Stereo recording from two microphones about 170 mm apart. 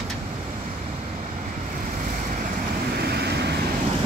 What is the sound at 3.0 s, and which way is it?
Vehicle, 70° right (ahead or behind).